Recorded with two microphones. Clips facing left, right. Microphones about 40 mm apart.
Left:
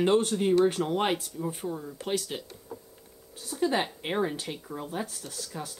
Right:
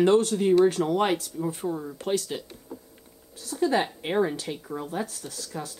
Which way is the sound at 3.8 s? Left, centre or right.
Centre.